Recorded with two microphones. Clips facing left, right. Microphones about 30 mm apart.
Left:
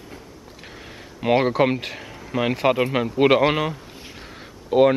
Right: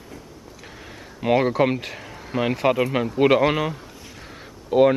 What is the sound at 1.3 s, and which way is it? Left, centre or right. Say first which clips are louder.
Speech: left 1 dB; centre.